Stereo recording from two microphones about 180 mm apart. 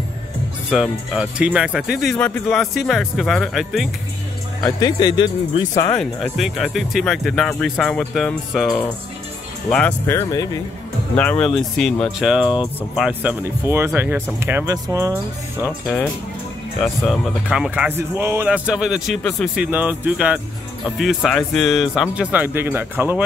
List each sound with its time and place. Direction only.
0.7 s speech: 5° right (ahead or behind)
4.6 s speech: 20° left (ahead or behind)
5.9 s speech: centre (ahead or behind); by 15.1 s 20° right (ahead or behind)
16.8 s speech: centre (ahead or behind)